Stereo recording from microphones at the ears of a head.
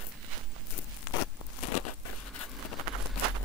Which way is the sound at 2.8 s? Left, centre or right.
Right.